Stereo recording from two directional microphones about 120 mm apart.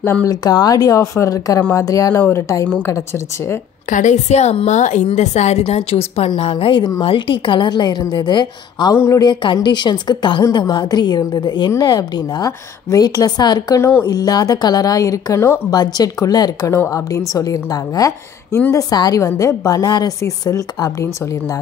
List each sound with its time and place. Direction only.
0.3 s a woman's voice: 35° left (ahead or behind)
3.9 s a woman's voice: 85° left
5.0 s a woman's voice: 75° left (ahead or behind)
5.7 s a woman's voice: 55° left (ahead or behind); by 8.9 s 40° left (ahead or behind)
8.9 s a woman's voice: 20° left (ahead or behind)
9.2 s a woman's voice: 40° left (ahead or behind)